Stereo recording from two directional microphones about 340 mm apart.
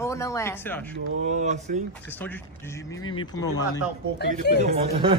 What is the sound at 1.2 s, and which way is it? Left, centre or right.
Speech, right.